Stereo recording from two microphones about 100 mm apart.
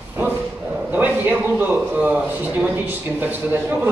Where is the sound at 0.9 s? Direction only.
15° right (ahead or behind).